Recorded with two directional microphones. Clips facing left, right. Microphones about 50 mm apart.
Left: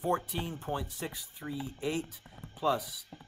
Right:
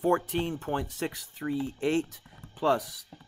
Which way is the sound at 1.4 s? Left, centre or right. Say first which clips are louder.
Right 7 dB; right.